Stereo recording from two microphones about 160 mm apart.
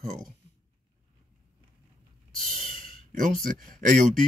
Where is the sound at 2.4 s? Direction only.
60° right (ahead or behind).